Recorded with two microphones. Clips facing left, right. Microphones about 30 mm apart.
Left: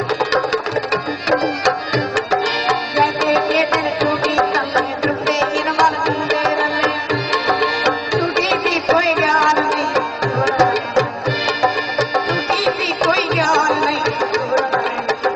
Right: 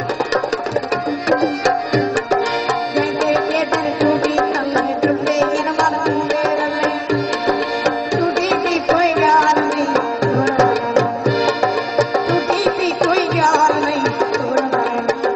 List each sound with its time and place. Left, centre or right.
2.7 s tabla: left
3.3 s music: left
13.0 s music: centre